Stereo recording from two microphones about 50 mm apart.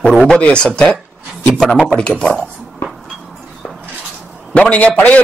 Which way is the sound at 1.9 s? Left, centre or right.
Left.